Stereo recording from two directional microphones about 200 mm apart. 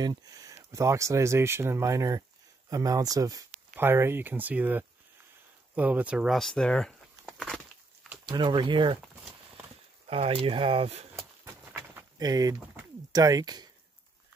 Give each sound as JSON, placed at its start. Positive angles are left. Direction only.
{"t": 0.0, "sound": "a sound", "side_deg": -20}
{"t": 0.7, "sound": "speech", "side_deg": -15}
{"t": 8.3, "sound": "speech", "side_deg": -20}
{"t": 10.0, "sound": "speech", "side_deg": -30}
{"t": 11.7, "sound": "a sound", "side_deg": -15}
{"t": 13.1, "sound": "speech", "side_deg": -20}